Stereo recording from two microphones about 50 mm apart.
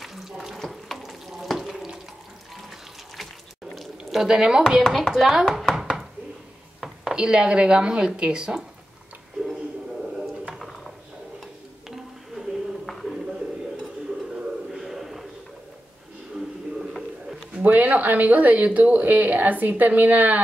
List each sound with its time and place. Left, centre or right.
0.0 s water tap: centre
0.6 s water: centre
3.7 s speech: centre
5.1 s chopping: centre
7.2 s speech: centre
10.6 s a sound: centre
12.8 s a sound: centre
14.7 s a sound: centre
17.6 s speech: right